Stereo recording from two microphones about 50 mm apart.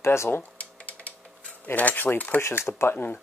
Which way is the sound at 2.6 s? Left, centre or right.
Left.